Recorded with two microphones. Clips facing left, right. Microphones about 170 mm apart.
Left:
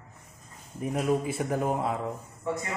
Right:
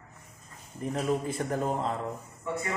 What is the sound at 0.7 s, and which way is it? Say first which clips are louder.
Speech: left 2 dB; 10° left (ahead or behind).